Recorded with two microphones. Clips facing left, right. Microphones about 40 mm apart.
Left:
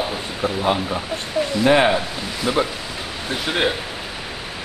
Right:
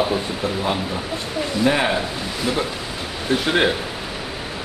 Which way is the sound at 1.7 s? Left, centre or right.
Centre.